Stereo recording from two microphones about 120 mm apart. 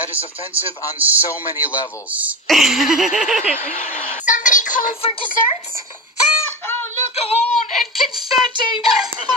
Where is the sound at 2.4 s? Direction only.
Centre (ahead or behind).